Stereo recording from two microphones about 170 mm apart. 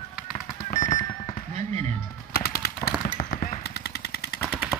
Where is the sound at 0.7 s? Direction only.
40° left (ahead or behind).